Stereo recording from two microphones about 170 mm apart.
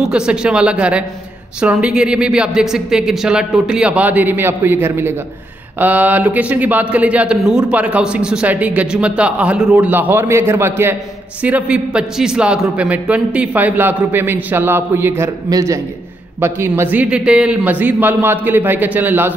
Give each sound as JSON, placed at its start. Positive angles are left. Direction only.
{"t": 0.0, "sound": "a man's voice", "side_deg": -5}